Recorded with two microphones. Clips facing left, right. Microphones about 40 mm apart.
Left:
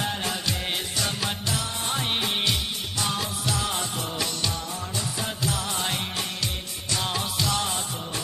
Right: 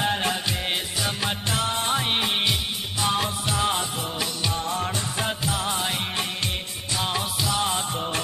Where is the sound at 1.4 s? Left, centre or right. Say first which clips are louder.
Right 4 dB; right.